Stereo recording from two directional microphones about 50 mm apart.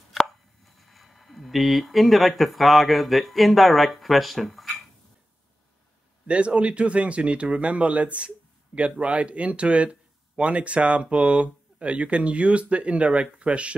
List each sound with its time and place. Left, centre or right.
0.1 s speech: centre
6.2 s speech: right